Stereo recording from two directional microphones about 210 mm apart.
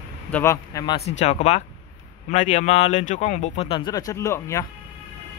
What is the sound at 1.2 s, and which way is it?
Speech, 30° left (ahead or behind).